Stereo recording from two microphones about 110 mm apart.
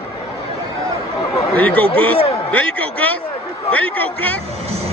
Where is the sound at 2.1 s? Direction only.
60° left (ahead or behind).